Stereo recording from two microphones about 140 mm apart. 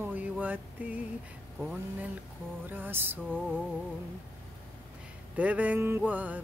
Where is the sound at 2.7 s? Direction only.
15° right (ahead or behind).